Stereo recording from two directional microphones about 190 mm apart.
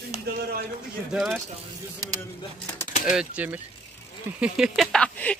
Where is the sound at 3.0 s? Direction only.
5° right (ahead or behind).